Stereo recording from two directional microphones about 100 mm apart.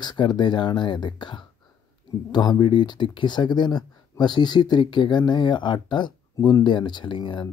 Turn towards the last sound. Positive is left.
turn(degrees=50)  # may be behind; listen again after turning